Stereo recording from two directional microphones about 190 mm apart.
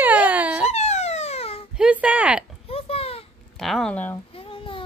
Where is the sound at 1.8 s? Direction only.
5° right (ahead or behind).